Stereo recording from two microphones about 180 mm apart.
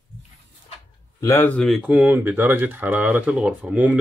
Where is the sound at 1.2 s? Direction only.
15° left (ahead or behind).